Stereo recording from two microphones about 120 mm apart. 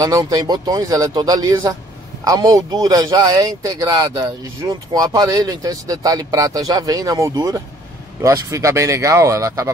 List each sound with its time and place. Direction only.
0.0 s speech: 30° right (ahead or behind)